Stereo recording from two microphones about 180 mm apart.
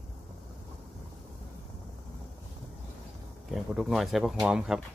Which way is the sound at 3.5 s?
Centre (ahead or behind).